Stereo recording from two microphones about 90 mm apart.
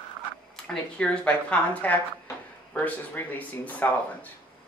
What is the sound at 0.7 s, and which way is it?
Speech, 15° left (ahead or behind).